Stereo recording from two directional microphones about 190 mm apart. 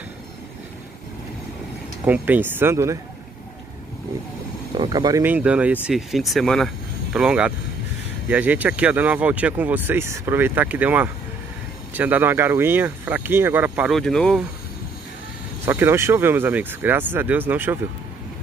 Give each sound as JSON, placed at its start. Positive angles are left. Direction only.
{"t": 2.0, "sound": "speech", "side_deg": -10}
{"t": 4.7, "sound": "speech", "side_deg": -20}
{"t": 5.2, "sound": "speech", "side_deg": -10}
{"t": 15.6, "sound": "speech", "side_deg": -15}